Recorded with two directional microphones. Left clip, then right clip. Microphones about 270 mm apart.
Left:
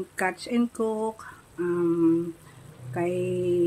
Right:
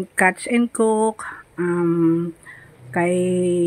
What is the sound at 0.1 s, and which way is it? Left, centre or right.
Speech, centre.